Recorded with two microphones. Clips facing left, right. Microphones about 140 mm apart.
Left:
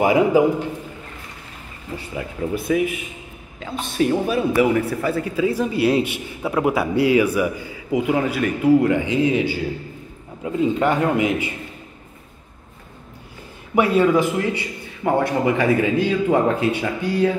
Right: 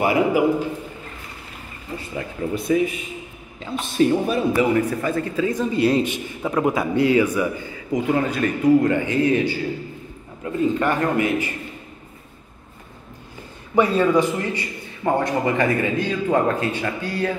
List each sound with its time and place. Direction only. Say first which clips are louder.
0.0 s a man's voice: left 3 dB; 20° left (ahead or behind)
2.1 s speech: left 1 dB; 5° left (ahead or behind)
13.7 s speech: left 1 dB; 5° left (ahead or behind)